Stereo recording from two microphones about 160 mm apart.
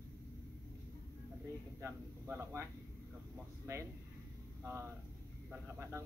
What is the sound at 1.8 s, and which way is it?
Speech, 15° right (ahead or behind).